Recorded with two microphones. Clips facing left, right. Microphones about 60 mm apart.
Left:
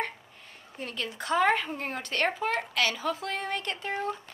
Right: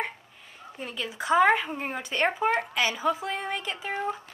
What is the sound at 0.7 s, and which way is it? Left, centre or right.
Speech, centre.